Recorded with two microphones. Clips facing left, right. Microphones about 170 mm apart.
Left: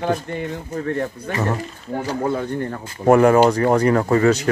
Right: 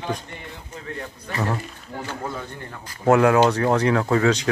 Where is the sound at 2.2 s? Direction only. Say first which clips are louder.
Left 10 dB; 50° left (ahead or behind).